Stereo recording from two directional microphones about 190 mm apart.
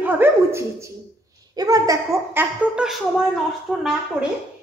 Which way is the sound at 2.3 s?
5° right (ahead or behind).